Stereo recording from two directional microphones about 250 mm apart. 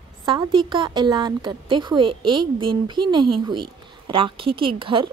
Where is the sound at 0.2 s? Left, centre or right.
Centre.